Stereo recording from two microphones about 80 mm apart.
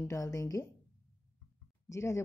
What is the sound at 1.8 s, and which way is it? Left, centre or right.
Speech, left.